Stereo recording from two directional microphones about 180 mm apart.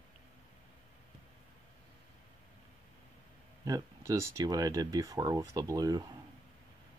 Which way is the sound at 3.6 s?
20° right (ahead or behind).